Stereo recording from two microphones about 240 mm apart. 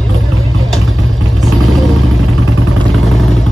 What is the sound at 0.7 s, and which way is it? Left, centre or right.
Vehicle, centre.